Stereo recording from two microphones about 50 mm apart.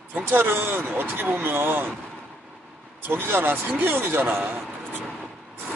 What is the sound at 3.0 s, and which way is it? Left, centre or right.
Speech, right.